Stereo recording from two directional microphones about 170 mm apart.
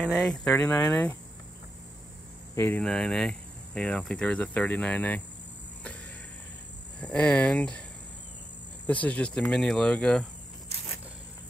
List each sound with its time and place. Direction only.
0.0 s speech: centre (ahead or behind)
2.5 s speech: 10° left (ahead or behind)
7.0 s speech: 5° left (ahead or behind)
8.8 s speech: 10° left (ahead or behind)